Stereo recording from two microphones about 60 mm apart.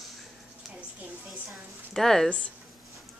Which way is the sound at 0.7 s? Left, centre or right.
Right.